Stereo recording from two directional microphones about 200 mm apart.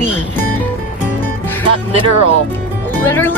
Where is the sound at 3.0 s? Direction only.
10° left (ahead or behind).